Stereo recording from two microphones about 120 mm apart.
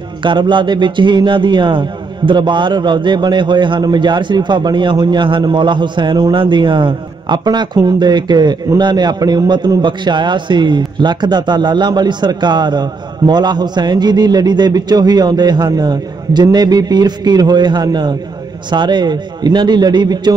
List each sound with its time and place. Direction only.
0.2 s a man's voice: 40° right (ahead or behind)